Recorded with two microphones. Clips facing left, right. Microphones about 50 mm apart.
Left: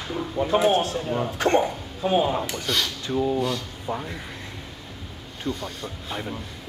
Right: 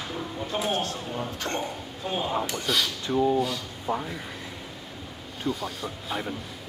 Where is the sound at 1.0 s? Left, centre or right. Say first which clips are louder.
Left 6 dB; left.